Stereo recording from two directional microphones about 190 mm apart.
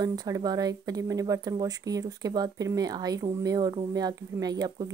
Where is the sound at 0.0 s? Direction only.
20° right (ahead or behind).